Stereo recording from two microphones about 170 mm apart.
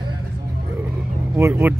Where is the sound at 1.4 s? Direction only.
10° right (ahead or behind).